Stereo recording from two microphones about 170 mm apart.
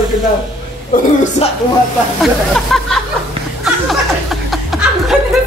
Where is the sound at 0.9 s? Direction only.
55° left (ahead or behind).